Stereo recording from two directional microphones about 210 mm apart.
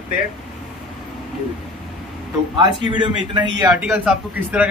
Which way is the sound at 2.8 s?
20° right (ahead or behind).